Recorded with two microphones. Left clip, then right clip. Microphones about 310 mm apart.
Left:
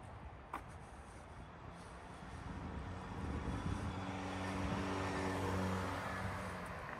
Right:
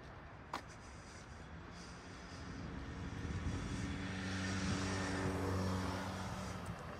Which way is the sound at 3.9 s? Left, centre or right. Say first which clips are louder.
Even; centre.